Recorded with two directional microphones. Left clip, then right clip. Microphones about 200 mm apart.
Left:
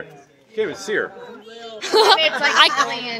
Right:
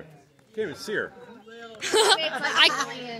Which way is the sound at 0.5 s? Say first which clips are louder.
Left 7 dB; 50° right (ahead or behind).